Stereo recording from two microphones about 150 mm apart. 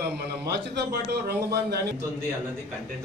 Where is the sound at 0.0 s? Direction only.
90° right.